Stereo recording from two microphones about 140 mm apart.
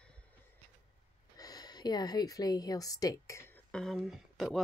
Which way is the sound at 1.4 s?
30° left (ahead or behind).